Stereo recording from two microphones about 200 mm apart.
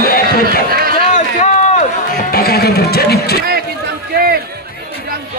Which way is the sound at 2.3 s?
50° left (ahead or behind).